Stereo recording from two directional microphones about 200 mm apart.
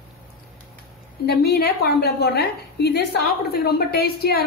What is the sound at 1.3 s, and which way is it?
A woman's voice, 50° left (ahead or behind).